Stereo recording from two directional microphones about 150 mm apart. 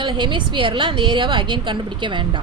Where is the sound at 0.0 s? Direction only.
35° right (ahead or behind).